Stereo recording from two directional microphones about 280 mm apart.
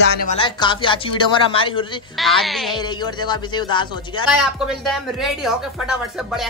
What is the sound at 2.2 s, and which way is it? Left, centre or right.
Speech, centre.